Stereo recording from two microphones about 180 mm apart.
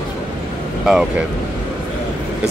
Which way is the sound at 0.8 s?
Centre (ahead or behind).